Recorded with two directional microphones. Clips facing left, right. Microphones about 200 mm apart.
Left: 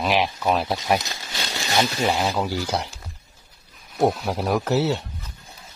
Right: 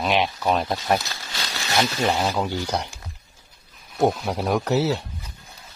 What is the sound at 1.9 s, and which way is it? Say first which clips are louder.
Speech: even; 5° left (ahead or behind).